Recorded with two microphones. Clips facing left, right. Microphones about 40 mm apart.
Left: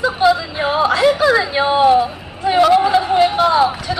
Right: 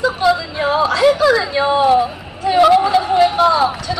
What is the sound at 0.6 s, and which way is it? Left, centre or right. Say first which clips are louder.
Yodeling: even; centre.